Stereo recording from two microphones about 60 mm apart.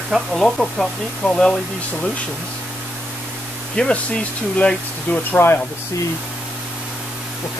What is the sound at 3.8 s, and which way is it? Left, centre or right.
Speech, centre.